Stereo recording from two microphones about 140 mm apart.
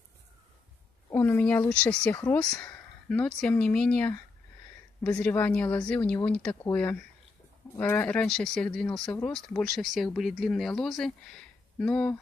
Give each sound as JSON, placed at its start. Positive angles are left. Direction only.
{"t": 1.1, "sound": "speech", "side_deg": 15}